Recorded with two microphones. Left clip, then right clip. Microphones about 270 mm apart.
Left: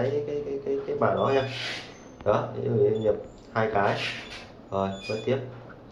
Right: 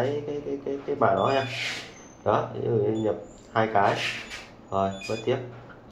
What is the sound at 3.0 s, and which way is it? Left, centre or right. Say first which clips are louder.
A man's voice: left 2 dB; right.